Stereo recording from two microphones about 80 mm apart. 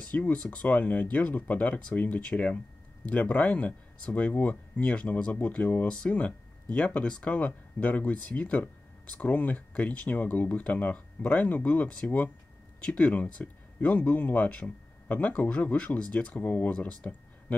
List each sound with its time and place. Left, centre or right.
0.0 s speech: centre